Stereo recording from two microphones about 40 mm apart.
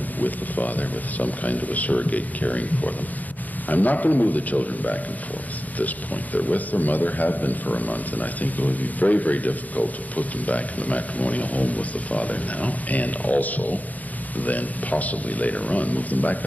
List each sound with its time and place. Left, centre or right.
0.2 s a man's voice: left